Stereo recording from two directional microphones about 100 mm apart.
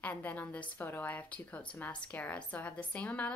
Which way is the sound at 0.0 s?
15° left (ahead or behind).